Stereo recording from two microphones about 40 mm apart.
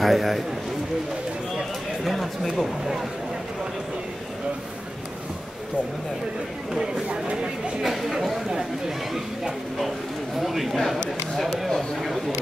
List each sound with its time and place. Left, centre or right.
0.0 s speech: centre
2.0 s speech: centre
6.8 s speech: right
7.8 s speech: centre